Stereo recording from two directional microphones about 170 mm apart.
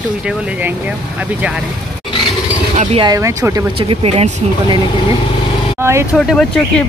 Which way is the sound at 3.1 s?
15° right (ahead or behind).